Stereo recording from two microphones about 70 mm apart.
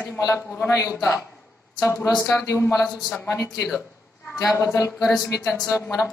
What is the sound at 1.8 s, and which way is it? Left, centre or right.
Speech, left.